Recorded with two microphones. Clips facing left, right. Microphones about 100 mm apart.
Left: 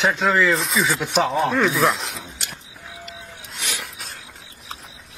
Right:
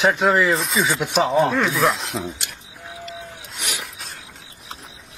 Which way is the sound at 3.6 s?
15° right (ahead or behind).